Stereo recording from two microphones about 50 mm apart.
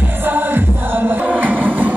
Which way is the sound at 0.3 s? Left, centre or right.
Right.